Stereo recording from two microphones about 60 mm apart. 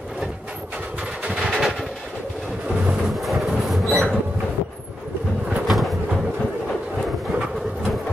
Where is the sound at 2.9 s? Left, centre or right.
Centre.